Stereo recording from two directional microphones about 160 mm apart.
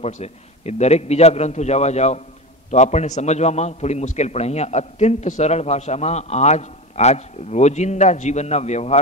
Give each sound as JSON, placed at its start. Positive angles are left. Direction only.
{"t": 0.0, "sound": "a man's voice", "side_deg": 45}